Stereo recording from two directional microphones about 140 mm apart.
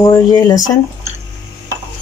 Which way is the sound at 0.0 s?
25° left (ahead or behind).